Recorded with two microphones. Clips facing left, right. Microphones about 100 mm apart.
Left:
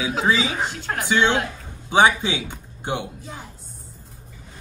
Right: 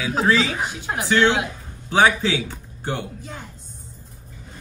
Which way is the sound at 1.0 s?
15° left (ahead or behind).